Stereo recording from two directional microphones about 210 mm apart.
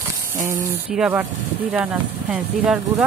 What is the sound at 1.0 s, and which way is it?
Speech, 10° right (ahead or behind).